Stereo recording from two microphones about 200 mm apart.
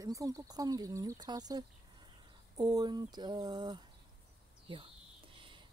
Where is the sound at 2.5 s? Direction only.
20° right (ahead or behind).